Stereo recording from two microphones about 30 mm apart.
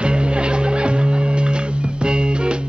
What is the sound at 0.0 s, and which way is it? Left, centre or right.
Music, right.